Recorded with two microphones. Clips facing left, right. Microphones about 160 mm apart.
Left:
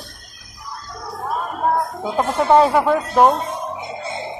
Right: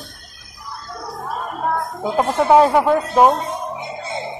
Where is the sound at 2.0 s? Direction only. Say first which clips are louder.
Right 6 dB; 5° right (ahead or behind).